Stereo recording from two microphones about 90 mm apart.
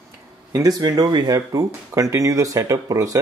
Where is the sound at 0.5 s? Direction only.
45° right (ahead or behind).